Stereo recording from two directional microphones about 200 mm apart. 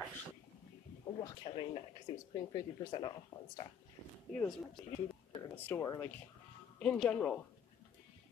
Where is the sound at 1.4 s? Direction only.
25° left (ahead or behind).